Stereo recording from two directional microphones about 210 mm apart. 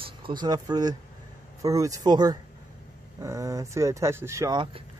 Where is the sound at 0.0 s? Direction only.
25° right (ahead or behind).